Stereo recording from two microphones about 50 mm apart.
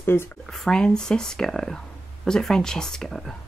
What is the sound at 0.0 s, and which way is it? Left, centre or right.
Speech, left.